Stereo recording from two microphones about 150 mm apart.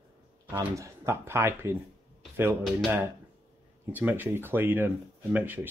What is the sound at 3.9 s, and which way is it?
Speech, 10° right (ahead or behind).